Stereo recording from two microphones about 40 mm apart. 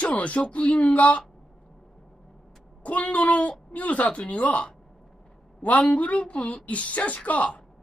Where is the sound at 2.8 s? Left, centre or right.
Left.